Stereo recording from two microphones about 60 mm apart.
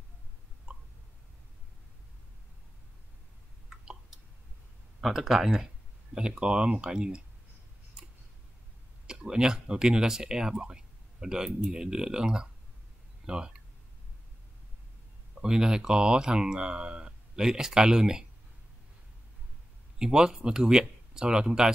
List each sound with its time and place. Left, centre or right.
3.7 s a sound: centre
5.0 s speech: centre
9.0 s speech: centre
15.4 s speech: centre
20.0 s speech: centre